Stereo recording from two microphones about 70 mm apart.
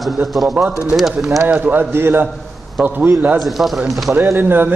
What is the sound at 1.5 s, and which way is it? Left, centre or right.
Speech, right.